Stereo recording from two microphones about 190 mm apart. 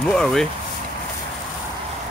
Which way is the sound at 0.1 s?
5° left (ahead or behind).